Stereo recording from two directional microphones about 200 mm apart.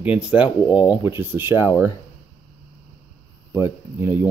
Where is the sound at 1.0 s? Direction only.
10° right (ahead or behind).